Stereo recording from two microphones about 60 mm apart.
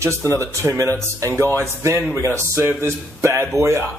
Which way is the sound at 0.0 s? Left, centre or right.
Right.